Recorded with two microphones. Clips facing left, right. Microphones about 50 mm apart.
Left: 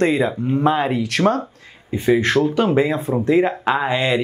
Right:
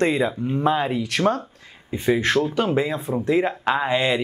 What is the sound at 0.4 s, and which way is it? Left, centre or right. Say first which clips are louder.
Speech: left 4 dB; centre.